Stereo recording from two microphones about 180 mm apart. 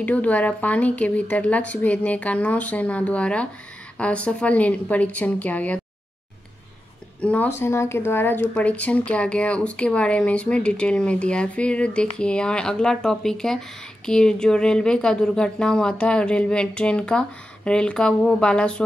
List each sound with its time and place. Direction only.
0.0 s speech: 10° left (ahead or behind)
7.2 s speech: 10° left (ahead or behind)